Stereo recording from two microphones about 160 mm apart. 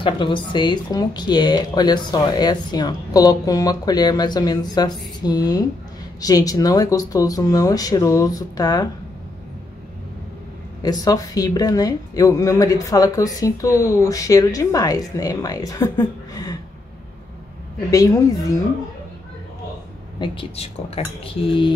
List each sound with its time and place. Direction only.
0.0 s speech: 30° left (ahead or behind)
10.8 s speech: 25° left (ahead or behind)
17.9 s speech: 20° left (ahead or behind)
20.2 s speech: 35° left (ahead or behind)